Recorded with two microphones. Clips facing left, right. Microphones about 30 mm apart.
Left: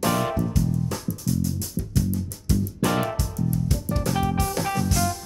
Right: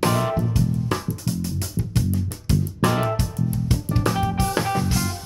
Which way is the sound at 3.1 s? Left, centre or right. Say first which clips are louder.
Right 1 dB; right.